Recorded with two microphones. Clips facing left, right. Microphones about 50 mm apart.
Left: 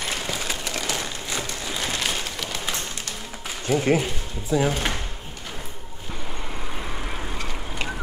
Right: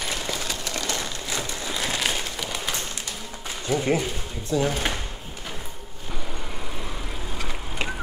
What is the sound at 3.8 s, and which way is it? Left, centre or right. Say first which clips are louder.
Speech: left 3 dB; centre.